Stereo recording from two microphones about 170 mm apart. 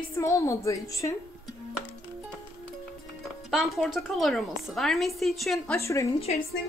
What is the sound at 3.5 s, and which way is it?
A woman's voice, centre (ahead or behind).